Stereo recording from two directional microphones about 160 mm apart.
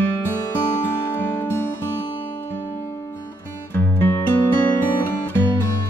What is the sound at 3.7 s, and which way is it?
Music, 15° left (ahead or behind).